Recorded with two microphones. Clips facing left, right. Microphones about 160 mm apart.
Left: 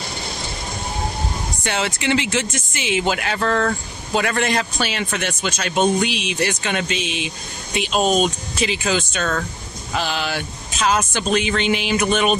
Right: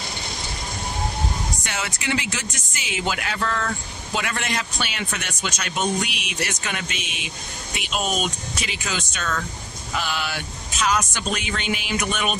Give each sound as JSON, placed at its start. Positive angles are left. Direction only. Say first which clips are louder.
{"t": 1.6, "sound": "speech", "louder": "left 7 dB", "side_deg": 30}
{"t": 3.3, "sound": "speech", "louder": "left 6 dB", "side_deg": 45}
{"t": 11.4, "sound": "speech", "louder": "left 7 dB", "side_deg": 90}
{"t": 12.0, "sound": "speech", "louder": "left 7 dB", "side_deg": 30}